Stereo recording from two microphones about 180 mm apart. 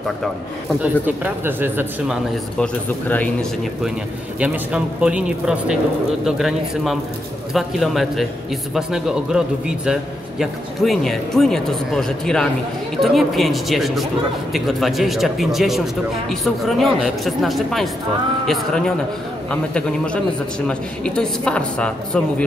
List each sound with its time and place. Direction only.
1.0 s speech: 10° right (ahead or behind)
2.6 s speech: 10° left (ahead or behind)
4.4 s speech: 5° right (ahead or behind)